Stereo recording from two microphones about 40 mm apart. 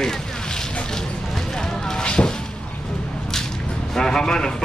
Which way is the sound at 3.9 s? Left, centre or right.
Centre.